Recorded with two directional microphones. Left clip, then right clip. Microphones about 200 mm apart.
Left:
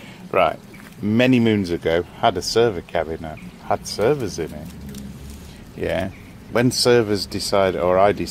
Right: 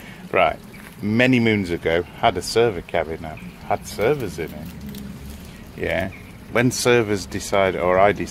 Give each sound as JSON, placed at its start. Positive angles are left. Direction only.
{"t": 0.3, "sound": "speech", "side_deg": 15}
{"t": 5.8, "sound": "speech", "side_deg": 10}